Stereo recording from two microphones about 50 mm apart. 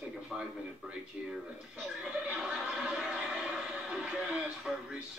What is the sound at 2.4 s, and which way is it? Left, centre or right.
Chuckle, centre.